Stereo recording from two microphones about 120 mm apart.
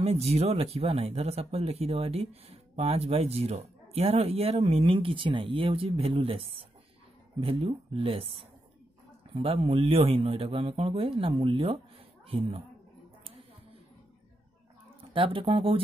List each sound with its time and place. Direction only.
0.0 s speech: 60° right (ahead or behind)
15.1 s speech: 50° right (ahead or behind)